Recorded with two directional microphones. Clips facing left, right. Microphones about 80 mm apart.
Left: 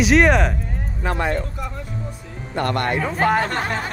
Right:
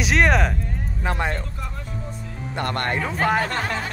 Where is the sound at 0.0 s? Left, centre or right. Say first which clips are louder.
Left 4 dB; centre.